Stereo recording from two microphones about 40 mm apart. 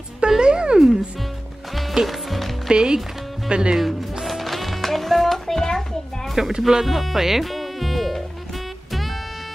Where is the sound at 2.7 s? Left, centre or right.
Centre.